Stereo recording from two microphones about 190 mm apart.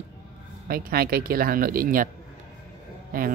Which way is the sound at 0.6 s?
50° right (ahead or behind).